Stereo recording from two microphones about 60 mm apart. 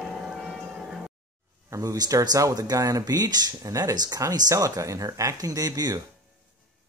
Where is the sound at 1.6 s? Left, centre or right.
Right.